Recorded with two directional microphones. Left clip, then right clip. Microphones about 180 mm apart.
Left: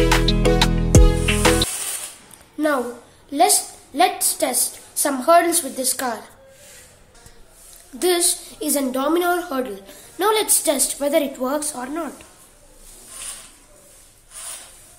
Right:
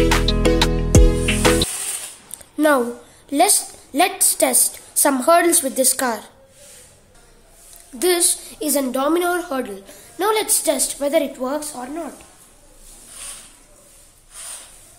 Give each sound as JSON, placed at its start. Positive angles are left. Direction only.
{"t": 0.0, "sound": "music", "side_deg": 0}
{"t": 2.5, "sound": "a sound", "side_deg": -45}
{"t": 3.3, "sound": "a woman's voice", "side_deg": -40}
{"t": 8.0, "sound": "a woman's voice", "side_deg": -15}